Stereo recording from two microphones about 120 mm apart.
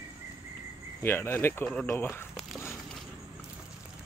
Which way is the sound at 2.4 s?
5° right (ahead or behind).